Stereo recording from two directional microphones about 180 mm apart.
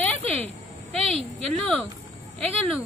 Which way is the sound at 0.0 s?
10° left (ahead or behind).